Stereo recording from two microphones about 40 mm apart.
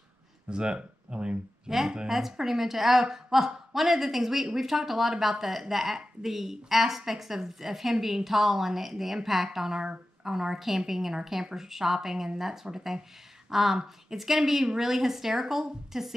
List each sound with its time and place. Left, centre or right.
0.5 s speech: right
1.7 s a woman's voice: centre